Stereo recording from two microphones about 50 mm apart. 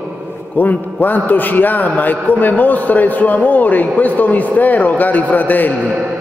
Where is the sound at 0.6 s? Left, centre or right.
Left.